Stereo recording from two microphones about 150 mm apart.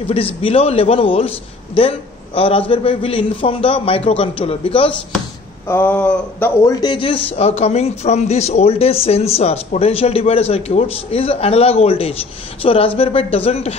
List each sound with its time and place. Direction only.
0.1 s a man's voice: 40° left (ahead or behind)
5.7 s a sound: 10° left (ahead or behind)
6.6 s speech: 25° left (ahead or behind)
7.2 s a man's voice: 45° left (ahead or behind)